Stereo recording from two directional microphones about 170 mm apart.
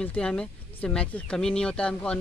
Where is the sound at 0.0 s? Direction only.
5° left (ahead or behind).